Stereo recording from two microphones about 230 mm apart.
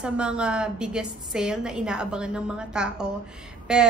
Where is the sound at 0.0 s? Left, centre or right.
Centre.